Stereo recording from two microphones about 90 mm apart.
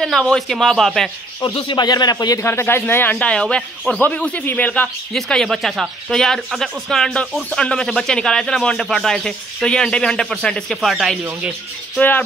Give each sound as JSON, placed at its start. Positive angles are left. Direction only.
{"t": 0.0, "sound": "speech", "side_deg": 5}
{"t": 1.4, "sound": "speech", "side_deg": 75}
{"t": 1.8, "sound": "a man's voice", "side_deg": 50}
{"t": 2.4, "sound": "speech", "side_deg": 25}
{"t": 5.1, "sound": "speech", "side_deg": 5}